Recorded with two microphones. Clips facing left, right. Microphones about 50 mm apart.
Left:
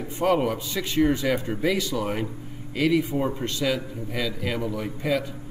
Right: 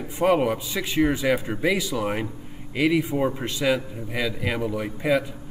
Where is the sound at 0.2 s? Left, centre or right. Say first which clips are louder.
Right 2 dB; centre.